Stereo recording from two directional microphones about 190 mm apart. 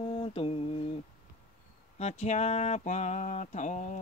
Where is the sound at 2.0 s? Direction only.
35° left (ahead or behind).